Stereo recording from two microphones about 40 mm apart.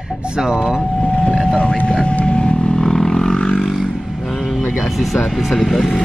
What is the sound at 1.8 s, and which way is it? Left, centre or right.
Vehicle, left.